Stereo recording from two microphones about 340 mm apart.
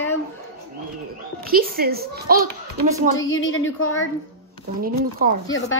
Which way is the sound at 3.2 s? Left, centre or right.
Left.